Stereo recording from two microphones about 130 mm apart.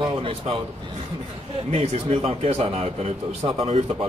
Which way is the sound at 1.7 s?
55° right (ahead or behind).